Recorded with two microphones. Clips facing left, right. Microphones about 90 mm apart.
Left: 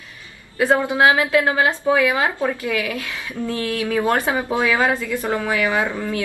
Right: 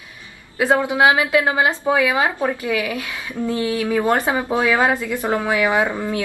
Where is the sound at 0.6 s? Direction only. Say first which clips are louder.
Even; 15° right (ahead or behind).